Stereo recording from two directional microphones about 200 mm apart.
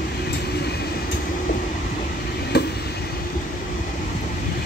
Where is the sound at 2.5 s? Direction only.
55° left (ahead or behind).